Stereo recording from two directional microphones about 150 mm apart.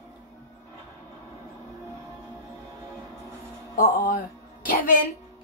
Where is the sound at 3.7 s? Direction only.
65° left (ahead or behind).